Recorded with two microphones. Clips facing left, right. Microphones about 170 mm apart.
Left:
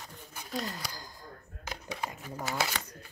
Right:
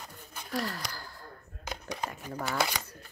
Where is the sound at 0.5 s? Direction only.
20° left (ahead or behind).